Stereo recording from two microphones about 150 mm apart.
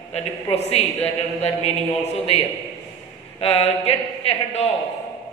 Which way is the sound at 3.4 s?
40° left (ahead or behind).